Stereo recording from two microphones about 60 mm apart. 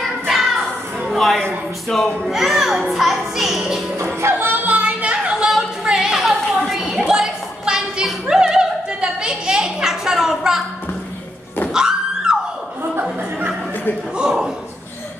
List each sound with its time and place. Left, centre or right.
0.0 s music: centre
1.1 s a sound: centre
1.9 s a child's voice: centre
4.0 s music: right; by 10.6 s centre
11.7 s a sound: centre
14.1 s a man's voice: centre